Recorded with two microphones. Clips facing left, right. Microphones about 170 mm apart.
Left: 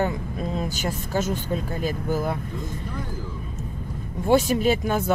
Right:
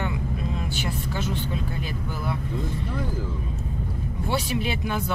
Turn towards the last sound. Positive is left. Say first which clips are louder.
# left 6 dB
turn(degrees=45)  # may be behind; listen again after turning